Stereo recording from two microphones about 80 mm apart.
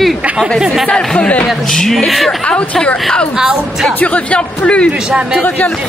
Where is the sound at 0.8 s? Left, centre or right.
Centre.